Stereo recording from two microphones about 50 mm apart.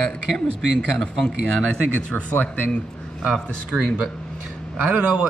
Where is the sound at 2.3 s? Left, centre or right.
Left.